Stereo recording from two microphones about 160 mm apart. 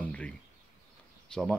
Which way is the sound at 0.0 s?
10° left (ahead or behind).